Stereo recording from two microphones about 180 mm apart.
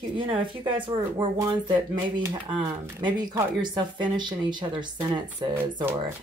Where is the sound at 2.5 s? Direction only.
25° right (ahead or behind).